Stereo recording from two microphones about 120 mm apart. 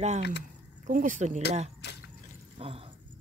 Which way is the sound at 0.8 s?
90° right.